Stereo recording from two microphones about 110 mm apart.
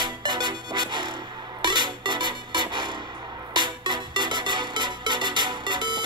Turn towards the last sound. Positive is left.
turn(degrees=-45)  # may be behind; listen again after turning